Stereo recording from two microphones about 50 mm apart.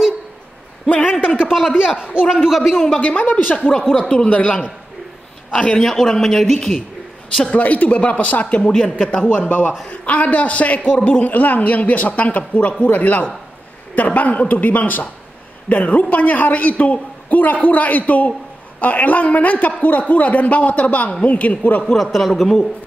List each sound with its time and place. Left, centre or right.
0.8 s a sound: left
1.2 s a sound: centre
2.4 s a man's voice: centre
3.0 s a man's voice: left
5.9 s speech: centre
7.5 s a man's voice: left
9.4 s a man's voice: left
21.9 s a man's voice: centre